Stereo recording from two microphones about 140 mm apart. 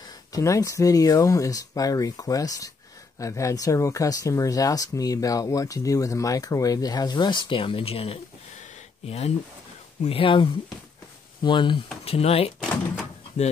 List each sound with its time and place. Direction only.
0.3 s speech: 25° left (ahead or behind)
12.0 s speech: 45° left (ahead or behind)